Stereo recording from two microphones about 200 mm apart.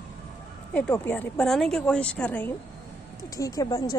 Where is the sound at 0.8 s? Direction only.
10° left (ahead or behind).